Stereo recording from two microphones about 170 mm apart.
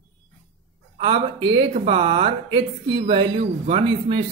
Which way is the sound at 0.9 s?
30° right (ahead or behind).